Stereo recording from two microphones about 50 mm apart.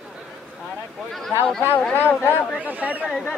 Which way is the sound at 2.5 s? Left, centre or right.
Right.